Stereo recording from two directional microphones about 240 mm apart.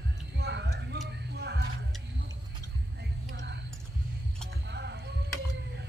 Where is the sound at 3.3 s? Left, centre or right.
Right.